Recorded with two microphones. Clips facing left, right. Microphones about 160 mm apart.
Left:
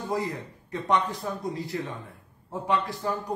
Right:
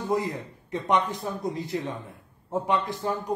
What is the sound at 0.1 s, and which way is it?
A man's voice, 20° right (ahead or behind).